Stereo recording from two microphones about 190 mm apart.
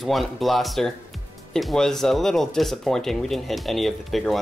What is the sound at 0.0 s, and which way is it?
Speech, centre (ahead or behind).